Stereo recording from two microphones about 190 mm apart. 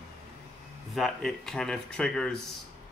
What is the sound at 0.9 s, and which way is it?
Speech, centre (ahead or behind).